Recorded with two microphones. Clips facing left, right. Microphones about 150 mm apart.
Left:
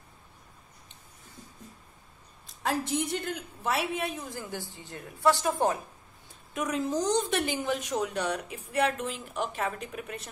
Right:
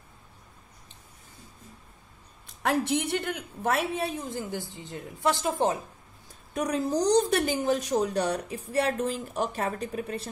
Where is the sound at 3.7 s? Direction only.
40° right (ahead or behind).